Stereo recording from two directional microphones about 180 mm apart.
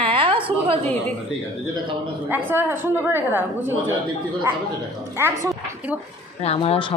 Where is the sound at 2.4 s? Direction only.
10° right (ahead or behind).